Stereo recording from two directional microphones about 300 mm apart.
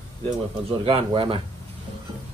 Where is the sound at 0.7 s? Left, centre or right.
Centre.